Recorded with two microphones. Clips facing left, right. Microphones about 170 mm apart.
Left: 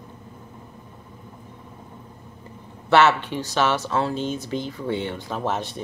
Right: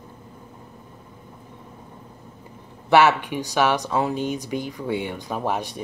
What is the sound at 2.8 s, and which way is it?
Speech, 15° right (ahead or behind).